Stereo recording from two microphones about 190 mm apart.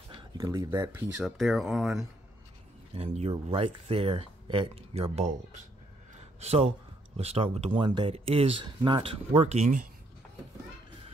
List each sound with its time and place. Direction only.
0.1 s speech: 20° right (ahead or behind)
1.2 s speech: centre (ahead or behind)
2.9 s speech: 30° right (ahead or behind)
6.1 s a sound: 35° right (ahead or behind)
7.2 s speech: 30° right (ahead or behind)